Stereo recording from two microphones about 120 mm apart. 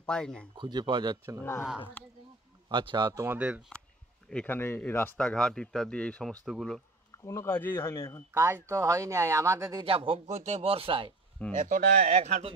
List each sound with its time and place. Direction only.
0.0 s speech: 5° left (ahead or behind)
0.6 s speech: 40° right (ahead or behind)
1.4 s speech: 20° left (ahead or behind)
2.7 s speech: 40° right (ahead or behind)
3.3 s speech: 10° right (ahead or behind)
4.3 s speech: 10° left (ahead or behind)
5.2 s speech: 5° left (ahead or behind)
7.2 s speech: 20° left (ahead or behind)
8.3 s speech: 20° right (ahead or behind)
9.8 s speech: 50° right (ahead or behind)
10.3 s speech: 70° right (ahead or behind); by 11.1 s 50° right (ahead or behind)
11.5 s a man's voice: 90° right; by 12.5 s 60° right (ahead or behind)